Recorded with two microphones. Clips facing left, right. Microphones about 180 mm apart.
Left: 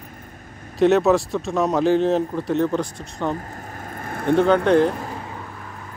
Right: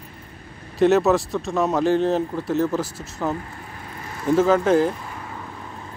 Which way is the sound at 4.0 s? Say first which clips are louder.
Left 1 dB; 55° left (ahead or behind).